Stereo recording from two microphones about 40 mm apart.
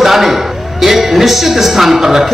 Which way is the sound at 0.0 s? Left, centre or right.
Centre.